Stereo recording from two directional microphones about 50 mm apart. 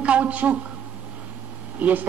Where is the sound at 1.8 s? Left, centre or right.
Right.